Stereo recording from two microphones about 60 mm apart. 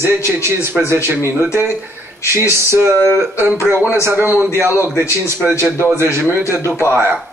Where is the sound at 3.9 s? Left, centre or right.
Right.